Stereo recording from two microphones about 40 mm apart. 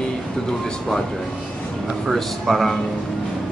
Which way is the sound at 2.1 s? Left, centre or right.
Centre.